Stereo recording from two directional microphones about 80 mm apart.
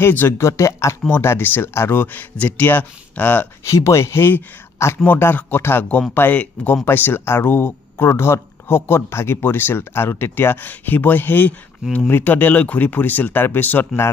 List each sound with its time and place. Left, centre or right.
0.0 s speech: left
0.5 s speech: left
2.3 s speech: centre
3.7 s speech: left